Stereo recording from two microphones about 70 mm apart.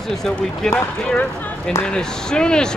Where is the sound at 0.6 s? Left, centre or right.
Centre.